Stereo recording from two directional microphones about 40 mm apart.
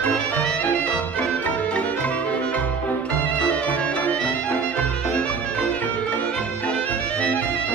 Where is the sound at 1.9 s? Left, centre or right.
Left.